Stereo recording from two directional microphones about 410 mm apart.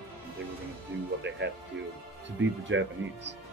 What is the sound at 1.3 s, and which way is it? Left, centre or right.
Speech, right.